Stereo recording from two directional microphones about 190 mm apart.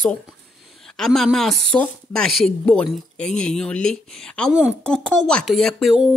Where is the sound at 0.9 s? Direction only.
Centre (ahead or behind).